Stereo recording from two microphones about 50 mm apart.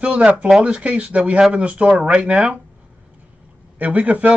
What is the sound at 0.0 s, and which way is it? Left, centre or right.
Speech, right.